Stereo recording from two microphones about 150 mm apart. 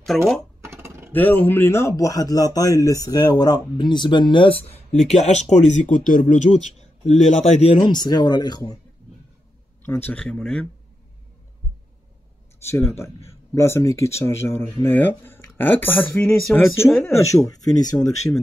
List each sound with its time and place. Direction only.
0.1 s speech: 5° left (ahead or behind)
0.7 s a sound: 15° right (ahead or behind)
1.1 s a man's voice: 10° left (ahead or behind); by 6.6 s 55° left (ahead or behind)
7.2 s a man's voice: 40° left (ahead or behind); by 8.7 s 25° left (ahead or behind)
9.8 s speech: 10° left (ahead or behind)
12.6 s a man's voice: 20° left (ahead or behind)